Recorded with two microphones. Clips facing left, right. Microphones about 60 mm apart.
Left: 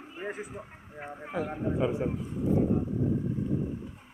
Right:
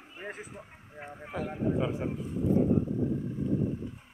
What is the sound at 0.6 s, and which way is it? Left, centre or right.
A man's voice, centre.